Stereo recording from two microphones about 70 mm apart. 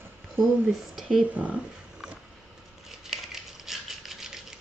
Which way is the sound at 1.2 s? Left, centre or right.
Right.